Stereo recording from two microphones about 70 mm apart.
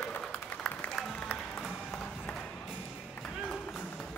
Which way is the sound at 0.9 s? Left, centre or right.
Centre.